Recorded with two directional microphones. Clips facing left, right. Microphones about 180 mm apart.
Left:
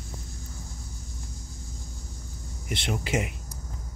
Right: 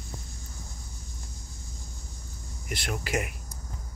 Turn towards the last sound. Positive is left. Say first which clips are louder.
# left 2 dB
turn(degrees=25)  # may be behind; listen again after turning